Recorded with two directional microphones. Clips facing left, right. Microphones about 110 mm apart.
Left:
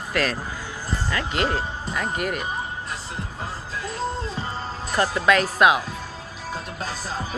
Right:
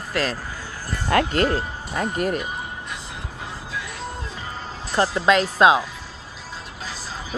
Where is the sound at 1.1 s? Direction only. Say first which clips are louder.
Right 11 dB; 55° right (ahead or behind).